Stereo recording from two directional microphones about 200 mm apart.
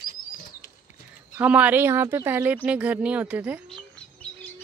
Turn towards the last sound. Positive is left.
turn(degrees=5)  # may be behind; listen again after turning